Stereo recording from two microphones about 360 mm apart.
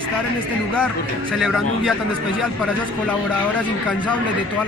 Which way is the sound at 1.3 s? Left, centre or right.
Centre.